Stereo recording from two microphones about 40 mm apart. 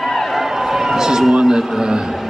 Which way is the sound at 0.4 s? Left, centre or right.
Centre.